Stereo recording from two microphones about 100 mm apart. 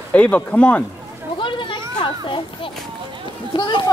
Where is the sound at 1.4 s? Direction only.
55° left (ahead or behind).